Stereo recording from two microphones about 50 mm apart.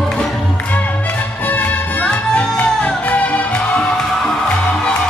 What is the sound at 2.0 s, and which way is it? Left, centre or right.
Music, left.